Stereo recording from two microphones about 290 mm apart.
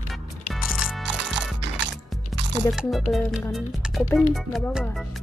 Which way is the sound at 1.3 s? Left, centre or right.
Right.